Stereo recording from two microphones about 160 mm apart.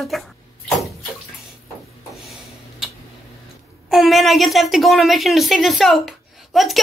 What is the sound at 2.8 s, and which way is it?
Tick-tock, 5° right (ahead or behind).